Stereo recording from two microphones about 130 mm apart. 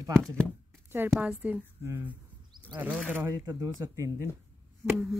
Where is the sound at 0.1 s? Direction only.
5° left (ahead or behind).